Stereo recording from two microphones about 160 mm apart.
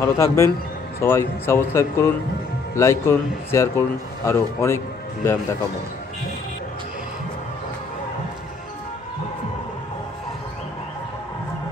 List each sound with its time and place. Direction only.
0.0 s a man's voice: 20° left (ahead or behind)